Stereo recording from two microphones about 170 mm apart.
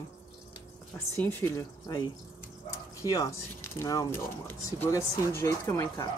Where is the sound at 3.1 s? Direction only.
20° left (ahead or behind).